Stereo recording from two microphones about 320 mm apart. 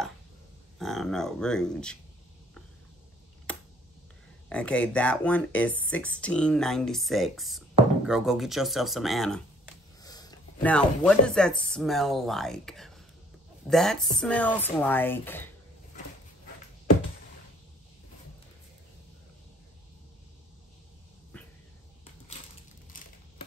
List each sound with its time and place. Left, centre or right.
0.7 s speech: centre
4.5 s speech: centre
10.0 s speech: centre
22.9 s crushing: left